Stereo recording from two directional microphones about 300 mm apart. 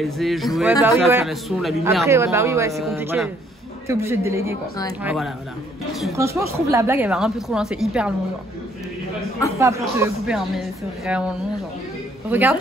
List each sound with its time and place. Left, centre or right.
0.0 s a woman's voice: centre
9.6 s a woman's voice: centre